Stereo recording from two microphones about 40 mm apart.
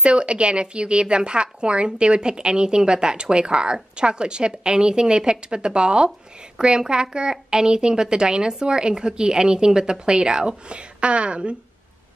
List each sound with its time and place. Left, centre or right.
0.0 s speech: right